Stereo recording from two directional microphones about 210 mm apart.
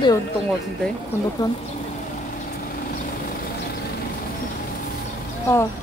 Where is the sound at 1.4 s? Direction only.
15° left (ahead or behind).